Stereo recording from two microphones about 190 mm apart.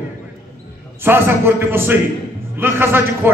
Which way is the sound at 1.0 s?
10° right (ahead or behind).